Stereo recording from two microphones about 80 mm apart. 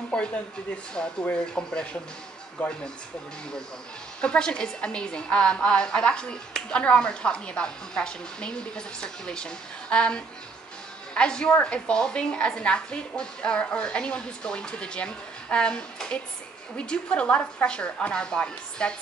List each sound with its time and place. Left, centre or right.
0.1 s a woman's voice: centre
4.2 s a woman's voice: centre